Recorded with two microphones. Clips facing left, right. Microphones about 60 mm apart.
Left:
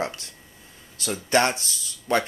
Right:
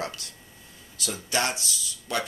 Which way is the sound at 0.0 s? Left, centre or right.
Left.